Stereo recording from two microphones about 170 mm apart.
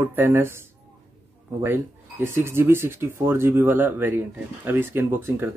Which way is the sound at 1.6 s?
15° right (ahead or behind).